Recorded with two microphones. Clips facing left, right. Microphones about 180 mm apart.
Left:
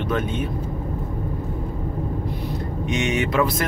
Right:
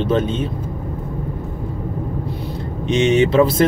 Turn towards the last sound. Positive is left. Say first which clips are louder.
# right 8 dB
turn(degrees=-30)  # may be behind; listen again after turning